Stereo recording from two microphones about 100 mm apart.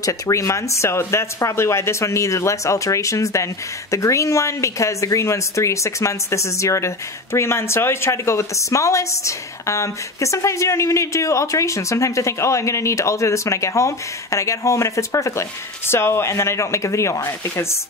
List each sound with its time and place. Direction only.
0.0 s a woman's voice: 30° left (ahead or behind)